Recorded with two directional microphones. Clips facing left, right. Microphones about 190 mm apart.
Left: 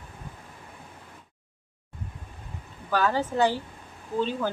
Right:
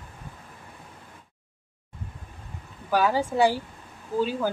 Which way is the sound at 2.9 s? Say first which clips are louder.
Right 2 dB; 10° right (ahead or behind).